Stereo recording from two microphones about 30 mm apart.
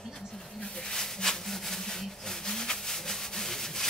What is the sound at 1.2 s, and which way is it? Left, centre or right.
Rub, centre.